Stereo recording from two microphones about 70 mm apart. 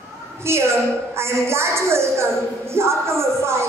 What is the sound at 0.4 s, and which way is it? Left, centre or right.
A woman's voice, right.